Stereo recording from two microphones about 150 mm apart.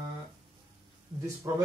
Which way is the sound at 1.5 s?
15° right (ahead or behind).